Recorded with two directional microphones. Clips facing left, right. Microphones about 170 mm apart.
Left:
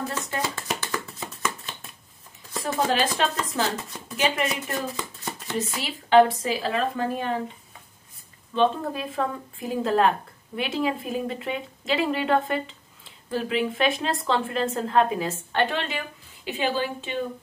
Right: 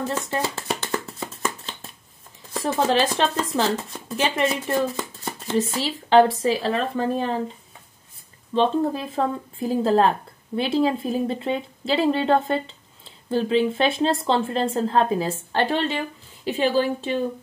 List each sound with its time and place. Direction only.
0.3 s a sound: 30° right (ahead or behind)
2.9 s speech: 30° right (ahead or behind)
8.5 s speech: 30° right (ahead or behind)